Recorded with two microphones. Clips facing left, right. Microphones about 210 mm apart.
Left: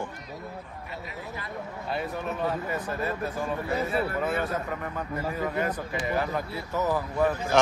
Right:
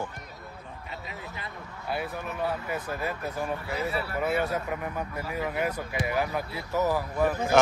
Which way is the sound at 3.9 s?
50° left (ahead or behind).